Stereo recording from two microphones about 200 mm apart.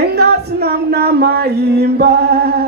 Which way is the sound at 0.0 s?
55° right (ahead or behind).